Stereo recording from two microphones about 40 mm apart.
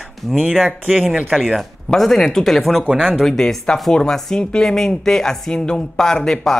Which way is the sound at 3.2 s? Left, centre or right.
Centre.